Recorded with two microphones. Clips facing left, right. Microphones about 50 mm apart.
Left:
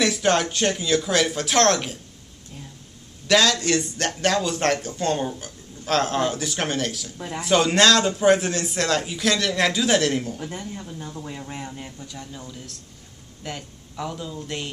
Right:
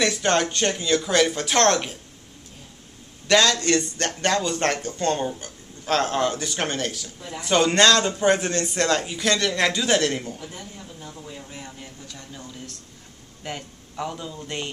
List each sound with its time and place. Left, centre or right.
0.0 s speech: centre
3.3 s speech: centre
11.4 s a sound: left
12.3 s speech: centre
13.4 s speech: centre